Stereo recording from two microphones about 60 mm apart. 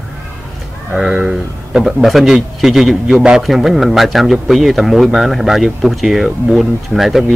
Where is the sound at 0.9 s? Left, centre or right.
Centre.